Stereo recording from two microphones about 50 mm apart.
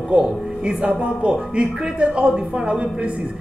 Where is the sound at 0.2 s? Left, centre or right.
Centre.